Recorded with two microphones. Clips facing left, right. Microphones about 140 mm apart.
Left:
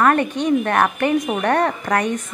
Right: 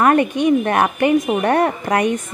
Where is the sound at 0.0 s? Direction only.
15° right (ahead or behind).